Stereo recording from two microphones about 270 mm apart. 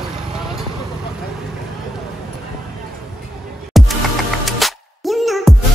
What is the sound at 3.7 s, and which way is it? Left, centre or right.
Music, centre.